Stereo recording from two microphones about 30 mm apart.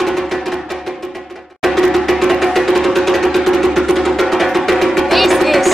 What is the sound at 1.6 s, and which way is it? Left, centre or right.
Music, centre.